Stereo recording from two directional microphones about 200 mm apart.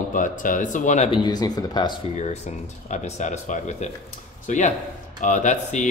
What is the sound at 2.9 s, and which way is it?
Speech, 35° left (ahead or behind).